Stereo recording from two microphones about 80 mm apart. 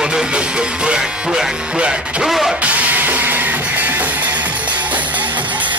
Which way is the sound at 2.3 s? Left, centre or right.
Centre.